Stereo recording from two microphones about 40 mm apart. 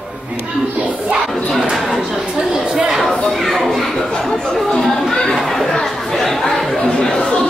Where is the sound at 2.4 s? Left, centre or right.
Centre.